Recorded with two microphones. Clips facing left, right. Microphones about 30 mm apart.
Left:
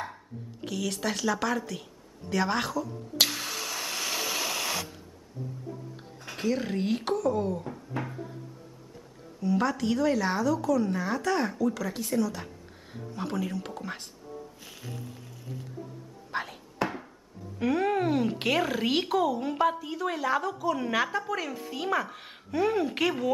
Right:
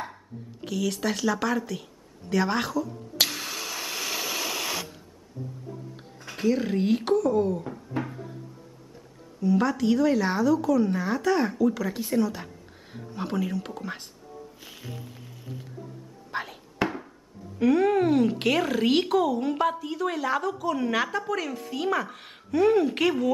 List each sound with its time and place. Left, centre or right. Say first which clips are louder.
0.0 s a sound: right 1 dB; centre
6.2 s speech: right 4 dB; centre
9.4 s speech: right 3 dB; centre
14.6 s music: right 1 dB; centre
16.3 s whispering: right 1 dB; centre
16.8 s a sound: right 3 dB; right
17.6 s speech: right 5 dB; centre